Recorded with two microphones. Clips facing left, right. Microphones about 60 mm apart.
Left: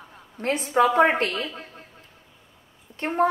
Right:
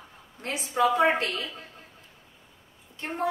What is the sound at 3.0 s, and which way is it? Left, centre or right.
Speech, left.